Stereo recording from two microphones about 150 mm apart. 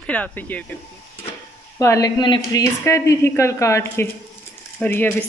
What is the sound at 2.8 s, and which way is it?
A woman's voice, 20° left (ahead or behind).